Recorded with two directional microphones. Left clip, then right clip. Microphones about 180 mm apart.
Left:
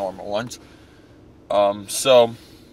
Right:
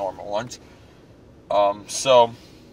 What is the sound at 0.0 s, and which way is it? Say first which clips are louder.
Speech: left 1 dB; 25° left (ahead or behind).